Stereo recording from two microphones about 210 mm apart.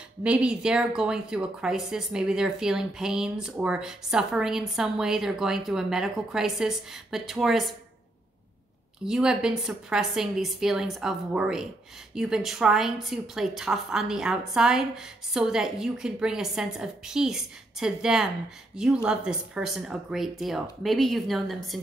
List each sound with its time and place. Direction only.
0.2 s speech: 5° right (ahead or behind)
9.0 s speech: 5° right (ahead or behind)